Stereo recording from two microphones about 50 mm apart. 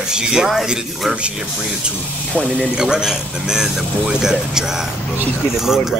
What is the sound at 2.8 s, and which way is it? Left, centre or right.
Speech, centre.